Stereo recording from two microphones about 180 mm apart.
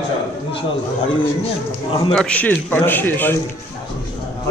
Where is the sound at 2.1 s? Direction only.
10° left (ahead or behind).